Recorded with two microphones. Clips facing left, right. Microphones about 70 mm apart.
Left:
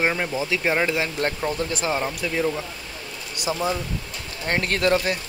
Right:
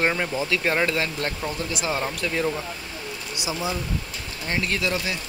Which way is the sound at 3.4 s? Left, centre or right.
Left.